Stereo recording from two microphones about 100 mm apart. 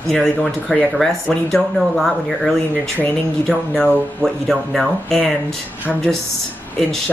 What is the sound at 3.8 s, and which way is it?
Speech, 5° left (ahead or behind).